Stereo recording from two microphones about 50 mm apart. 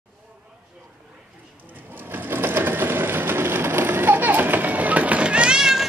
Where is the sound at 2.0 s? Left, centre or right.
Right; by 5.6 s centre.